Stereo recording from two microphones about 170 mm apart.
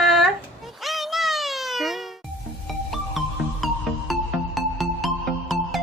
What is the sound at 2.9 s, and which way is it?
Music, centre (ahead or behind).